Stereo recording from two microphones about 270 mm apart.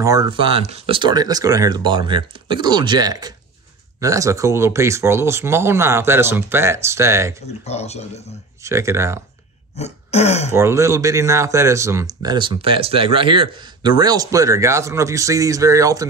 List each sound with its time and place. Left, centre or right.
0.0 s speech: centre
7.6 s speech: left
8.6 s speech: centre
9.8 s throat clearing: left
10.5 s speech: centre